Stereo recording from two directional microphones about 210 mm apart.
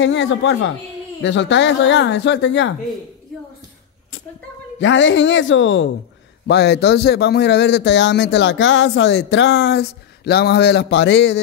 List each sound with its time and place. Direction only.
0.0 s a man's voice: 60° left (ahead or behind)
4.7 s a man's voice: 60° left (ahead or behind)
6.4 s a man's voice: 50° left (ahead or behind)